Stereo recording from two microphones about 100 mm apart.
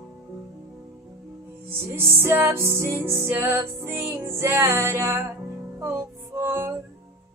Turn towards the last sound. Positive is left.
turn(degrees=-25)  # may be behind; listen again after turning